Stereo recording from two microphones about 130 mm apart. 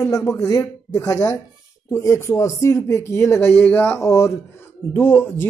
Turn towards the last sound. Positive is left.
turn(degrees=15)  # may be behind; listen again after turning